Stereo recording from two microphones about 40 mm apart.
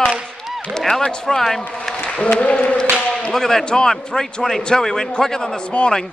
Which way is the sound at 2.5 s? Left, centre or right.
Left.